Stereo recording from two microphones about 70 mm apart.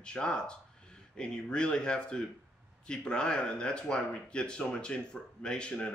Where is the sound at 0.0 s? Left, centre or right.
Centre.